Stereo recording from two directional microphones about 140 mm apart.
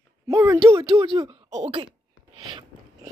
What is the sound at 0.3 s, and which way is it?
Speech, 25° right (ahead or behind).